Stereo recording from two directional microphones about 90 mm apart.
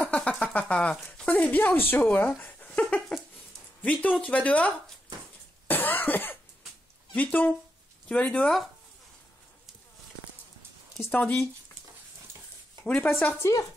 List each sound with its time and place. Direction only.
0.0 s speech: 10° left (ahead or behind)
5.7 s cough: 20° left (ahead or behind)
7.2 s speech: 20° left (ahead or behind)
11.1 s speech: 10° left (ahead or behind)
12.8 s speech: 15° left (ahead or behind)
13.4 s speech: 30° left (ahead or behind)